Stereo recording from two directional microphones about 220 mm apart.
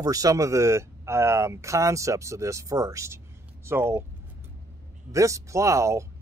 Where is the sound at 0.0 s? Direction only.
15° right (ahead or behind).